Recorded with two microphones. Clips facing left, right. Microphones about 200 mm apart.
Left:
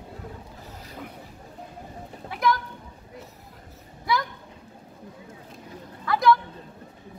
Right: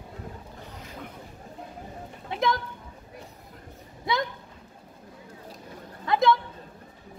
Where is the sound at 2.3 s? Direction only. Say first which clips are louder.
Left 1 dB; 25° right (ahead or behind).